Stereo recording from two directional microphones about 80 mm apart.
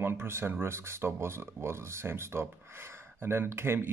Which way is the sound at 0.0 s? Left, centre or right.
Right.